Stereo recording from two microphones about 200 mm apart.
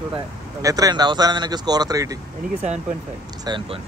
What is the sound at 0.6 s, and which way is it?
Speech, 20° right (ahead or behind).